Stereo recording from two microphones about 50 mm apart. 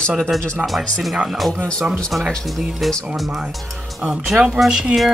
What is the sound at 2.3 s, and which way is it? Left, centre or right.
Speech, centre.